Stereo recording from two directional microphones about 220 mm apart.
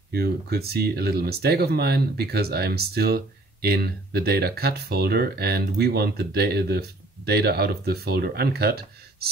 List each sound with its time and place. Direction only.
0.1 s speech: 45° right (ahead or behind)